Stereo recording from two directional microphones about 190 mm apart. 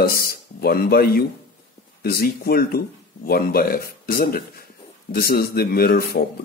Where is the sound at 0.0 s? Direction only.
50° left (ahead or behind).